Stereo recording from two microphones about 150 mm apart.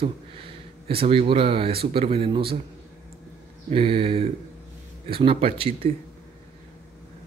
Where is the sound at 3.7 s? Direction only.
40° right (ahead or behind).